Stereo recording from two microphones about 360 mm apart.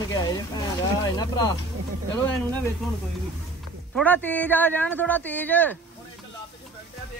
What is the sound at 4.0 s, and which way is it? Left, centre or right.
A man's voice, centre.